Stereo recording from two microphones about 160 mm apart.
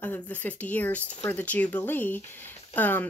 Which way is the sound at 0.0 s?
10° left (ahead or behind).